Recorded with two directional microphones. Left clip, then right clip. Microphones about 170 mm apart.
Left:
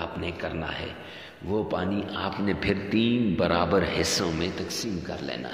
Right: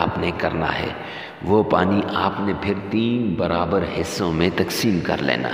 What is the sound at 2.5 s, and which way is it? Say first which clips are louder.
A man's voice: right 3 dB; 15° right (ahead or behind).